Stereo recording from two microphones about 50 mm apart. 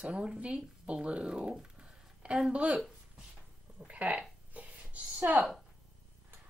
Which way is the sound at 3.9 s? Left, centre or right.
Right.